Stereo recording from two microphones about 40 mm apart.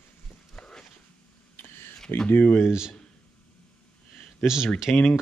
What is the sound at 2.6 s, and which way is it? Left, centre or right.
Speech, centre.